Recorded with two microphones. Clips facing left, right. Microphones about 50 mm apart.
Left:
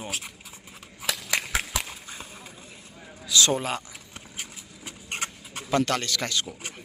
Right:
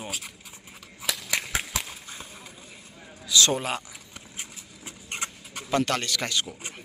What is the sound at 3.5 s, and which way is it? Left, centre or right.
Speech, centre.